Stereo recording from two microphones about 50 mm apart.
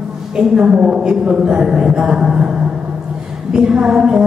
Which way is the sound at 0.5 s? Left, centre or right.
Centre.